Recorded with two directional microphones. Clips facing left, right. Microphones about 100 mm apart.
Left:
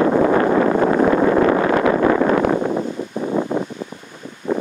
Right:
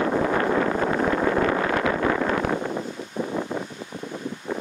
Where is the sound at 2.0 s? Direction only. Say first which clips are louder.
Left 8 dB; 45° left (ahead or behind); by 2.8 s 60° left (ahead or behind).